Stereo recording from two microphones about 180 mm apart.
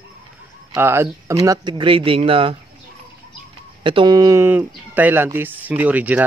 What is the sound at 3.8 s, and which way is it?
Speech, 25° right (ahead or behind).